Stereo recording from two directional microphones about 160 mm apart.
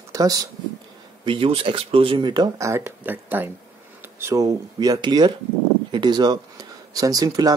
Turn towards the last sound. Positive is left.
turn(degrees=-25)  # may be behind; listen again after turning